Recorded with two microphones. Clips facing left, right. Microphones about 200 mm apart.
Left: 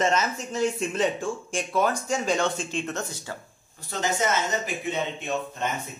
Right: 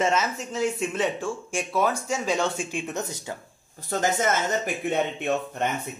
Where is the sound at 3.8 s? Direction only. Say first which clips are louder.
Right 2 dB; 50° right (ahead or behind).